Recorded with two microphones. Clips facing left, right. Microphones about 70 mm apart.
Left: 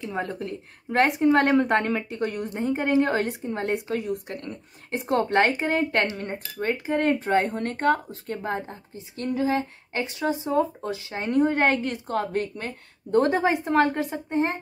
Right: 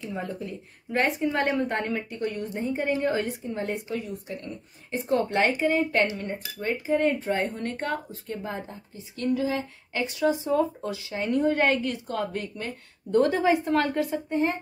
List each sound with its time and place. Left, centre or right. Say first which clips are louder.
0.1 s speech: left 3 dB; left